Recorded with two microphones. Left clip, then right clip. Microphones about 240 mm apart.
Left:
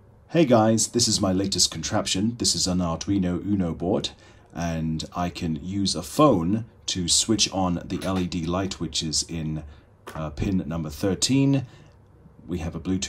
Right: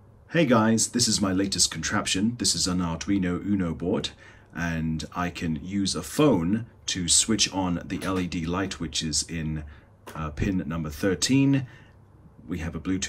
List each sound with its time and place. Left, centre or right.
0.3 s speech: centre